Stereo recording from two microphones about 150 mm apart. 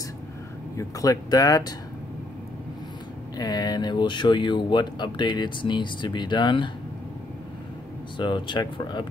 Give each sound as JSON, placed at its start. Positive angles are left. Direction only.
{"t": 0.7, "sound": "speech", "side_deg": 20}
{"t": 3.3, "sound": "speech", "side_deg": 25}
{"t": 8.2, "sound": "speech", "side_deg": 30}